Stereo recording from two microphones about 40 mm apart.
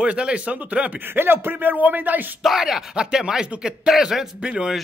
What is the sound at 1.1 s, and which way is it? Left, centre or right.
Speech, right.